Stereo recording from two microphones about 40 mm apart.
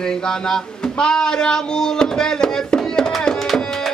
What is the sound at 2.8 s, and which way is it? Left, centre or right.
Music, centre.